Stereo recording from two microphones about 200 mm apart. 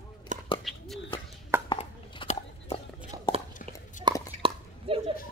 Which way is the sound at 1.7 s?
25° left (ahead or behind).